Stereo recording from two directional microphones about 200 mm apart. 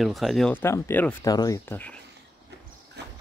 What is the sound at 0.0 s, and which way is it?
Speech, centre (ahead or behind).